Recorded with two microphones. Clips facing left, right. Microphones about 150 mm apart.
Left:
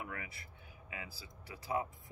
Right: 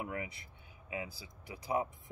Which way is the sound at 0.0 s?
20° right (ahead or behind).